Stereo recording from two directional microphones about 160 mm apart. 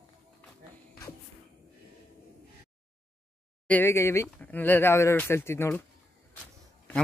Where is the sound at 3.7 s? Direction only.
15° left (ahead or behind).